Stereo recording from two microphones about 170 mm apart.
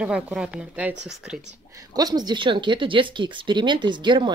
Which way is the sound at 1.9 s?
25° right (ahead or behind).